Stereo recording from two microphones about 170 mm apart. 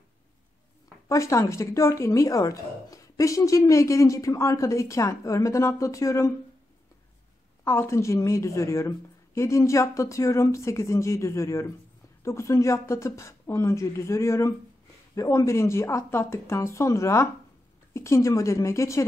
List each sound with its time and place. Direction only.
1.0 s speech: 20° left (ahead or behind)
7.6 s a woman's voice: 15° left (ahead or behind)